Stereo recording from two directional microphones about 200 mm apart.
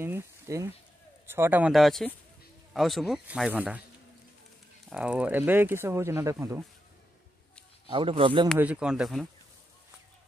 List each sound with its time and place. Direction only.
0.0 s speech: 15° right (ahead or behind)
4.8 s speech: 5° right (ahead or behind)
7.9 s speech: 25° right (ahead or behind)
8.5 s speech: 5° right (ahead or behind)